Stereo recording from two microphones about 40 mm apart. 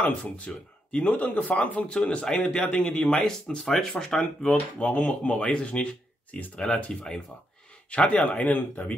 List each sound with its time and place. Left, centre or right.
0.2 s speech: left
1.0 s speech: left
1.9 s speech: left
3.1 s speech: centre
4.9 s speech: left
5.5 s speech: left
7.9 s speech: left